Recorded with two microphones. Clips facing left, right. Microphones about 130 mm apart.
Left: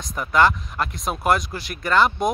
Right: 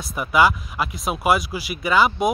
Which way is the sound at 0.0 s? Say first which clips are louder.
Right 1 dB; 5° right (ahead or behind).